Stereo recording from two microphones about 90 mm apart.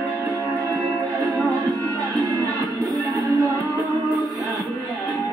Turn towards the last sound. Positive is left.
turn(degrees=-45)  # may be behind; listen again after turning